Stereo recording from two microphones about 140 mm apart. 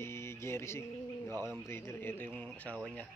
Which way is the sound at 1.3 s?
25° right (ahead or behind).